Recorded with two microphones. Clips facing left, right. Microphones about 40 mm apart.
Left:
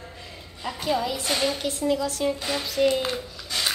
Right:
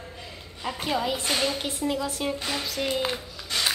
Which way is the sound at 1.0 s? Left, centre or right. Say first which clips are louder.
Even; right.